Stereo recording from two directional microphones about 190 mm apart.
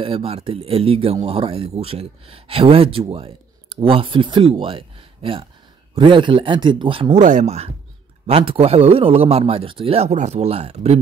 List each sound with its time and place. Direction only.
0.0 s a man's voice: 30° right (ahead or behind)
7.2 s a man's voice: 40° right (ahead or behind)